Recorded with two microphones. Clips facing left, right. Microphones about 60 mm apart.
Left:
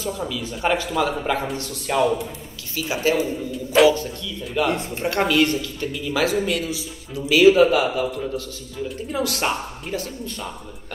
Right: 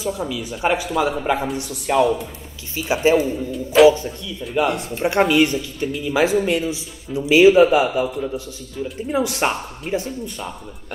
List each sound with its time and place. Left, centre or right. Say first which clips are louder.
0.0 s speech: right 2 dB; centre
2.7 s speech: right 5 dB; right
3.2 s speech: right 3 dB; centre
4.6 s speech: right 1 dB; left
5.2 s speech: right 2 dB; centre
9.1 s speech: right 3 dB; right